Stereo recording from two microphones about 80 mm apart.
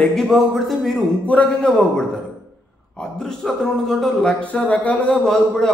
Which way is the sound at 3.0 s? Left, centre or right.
Centre.